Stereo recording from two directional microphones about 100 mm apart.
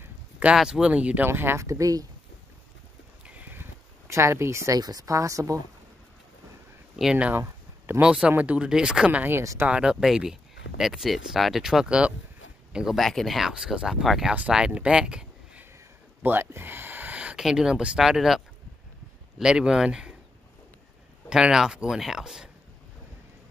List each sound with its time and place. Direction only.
0.0 s a sound: 15° right (ahead or behind)
0.6 s speech: 10° right (ahead or behind); by 2.0 s 35° right (ahead or behind)
3.3 s a sound: 15° right (ahead or behind)
4.1 s speech: 30° right (ahead or behind)
7.0 s speech: 10° right (ahead or behind)
7.3 s a sound: 25° right (ahead or behind)
8.0 s speech: 10° right (ahead or behind)
9.4 s speech: 30° right (ahead or behind)
9.7 s speech: 10° right (ahead or behind)
16.2 s speech: 20° right (ahead or behind)
21.3 s speech: 5° right (ahead or behind)